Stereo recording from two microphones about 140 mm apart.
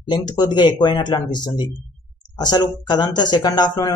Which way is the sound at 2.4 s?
30° left (ahead or behind).